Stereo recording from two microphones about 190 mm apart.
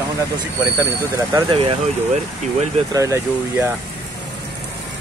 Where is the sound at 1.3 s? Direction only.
25° right (ahead or behind).